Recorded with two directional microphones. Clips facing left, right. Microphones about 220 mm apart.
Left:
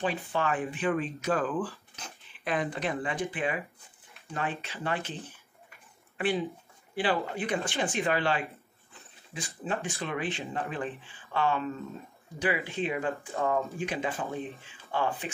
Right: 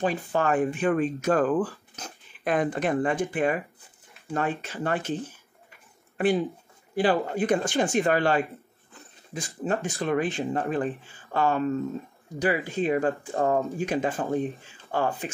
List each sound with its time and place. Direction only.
0.0 s speech: 45° right (ahead or behind)
6.1 s speech: 40° right (ahead or behind)